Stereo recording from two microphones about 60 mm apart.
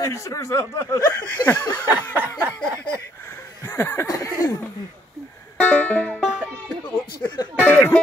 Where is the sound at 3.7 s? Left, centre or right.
Left.